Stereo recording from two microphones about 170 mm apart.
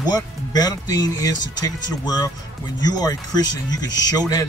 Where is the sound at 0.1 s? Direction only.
25° left (ahead or behind).